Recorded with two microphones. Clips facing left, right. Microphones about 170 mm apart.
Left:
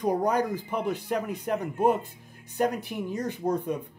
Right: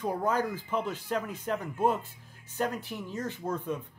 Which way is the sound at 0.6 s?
15° left (ahead or behind).